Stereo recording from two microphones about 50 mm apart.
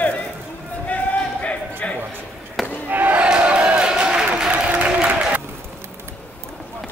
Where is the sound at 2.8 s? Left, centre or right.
Right.